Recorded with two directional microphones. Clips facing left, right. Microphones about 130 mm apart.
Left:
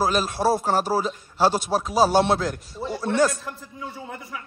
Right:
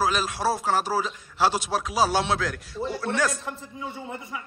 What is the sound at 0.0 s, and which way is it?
A man's voice, 45° left (ahead or behind).